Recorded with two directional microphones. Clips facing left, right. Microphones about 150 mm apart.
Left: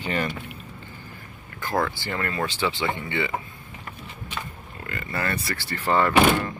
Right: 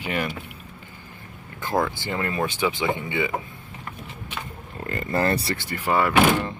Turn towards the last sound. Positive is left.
turn(degrees=0)  # may be behind; listen again after turning